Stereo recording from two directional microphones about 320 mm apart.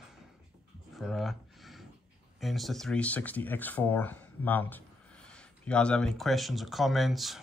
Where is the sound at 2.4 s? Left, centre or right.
Centre.